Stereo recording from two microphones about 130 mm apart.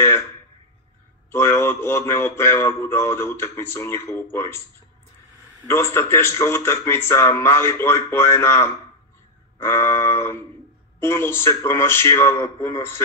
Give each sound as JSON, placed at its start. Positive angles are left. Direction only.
{"t": 1.3, "sound": "speech", "side_deg": 20}
{"t": 5.7, "sound": "speech", "side_deg": 20}